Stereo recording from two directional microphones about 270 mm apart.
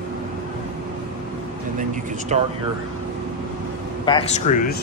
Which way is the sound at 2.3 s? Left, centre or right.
Right.